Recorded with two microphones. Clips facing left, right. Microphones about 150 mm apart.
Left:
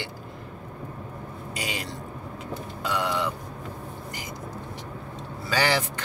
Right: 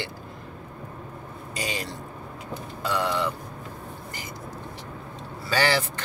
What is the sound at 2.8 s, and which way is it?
Speech, 15° left (ahead or behind).